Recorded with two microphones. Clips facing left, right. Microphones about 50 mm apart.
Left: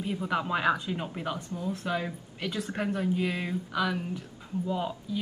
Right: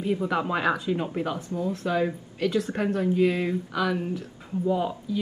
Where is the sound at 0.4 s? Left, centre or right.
Centre.